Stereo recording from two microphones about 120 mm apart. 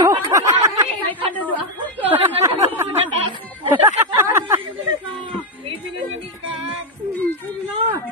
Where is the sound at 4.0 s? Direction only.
20° right (ahead or behind).